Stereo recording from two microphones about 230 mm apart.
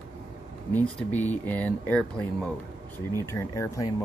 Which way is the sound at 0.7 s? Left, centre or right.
Centre.